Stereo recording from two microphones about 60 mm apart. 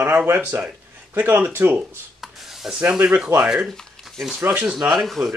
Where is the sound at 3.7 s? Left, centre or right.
Centre.